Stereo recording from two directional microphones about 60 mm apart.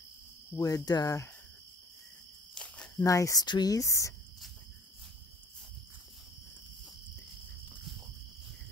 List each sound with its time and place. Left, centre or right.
0.6 s speech: left
2.5 s walk: centre
3.0 s speech: left